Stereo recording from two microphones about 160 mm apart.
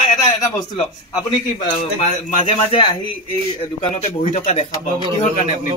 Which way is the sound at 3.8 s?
40° left (ahead or behind).